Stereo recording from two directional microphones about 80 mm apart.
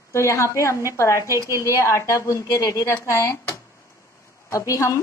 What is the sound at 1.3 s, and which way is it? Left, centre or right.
Speech, right.